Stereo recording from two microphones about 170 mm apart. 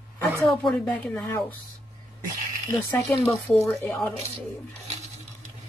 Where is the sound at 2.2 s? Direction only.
55° right (ahead or behind).